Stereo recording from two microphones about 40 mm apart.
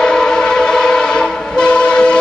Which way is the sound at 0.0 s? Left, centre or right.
Centre.